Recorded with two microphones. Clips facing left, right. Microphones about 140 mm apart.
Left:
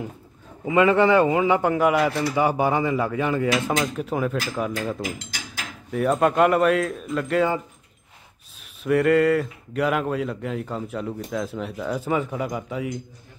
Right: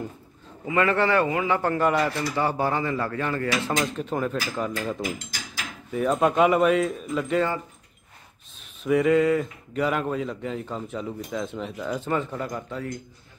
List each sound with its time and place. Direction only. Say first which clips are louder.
0.7 s speech: left 5 dB; 15° left (ahead or behind); by 7.4 s centre (ahead or behind)
8.8 s speech: left 2 dB; centre (ahead or behind)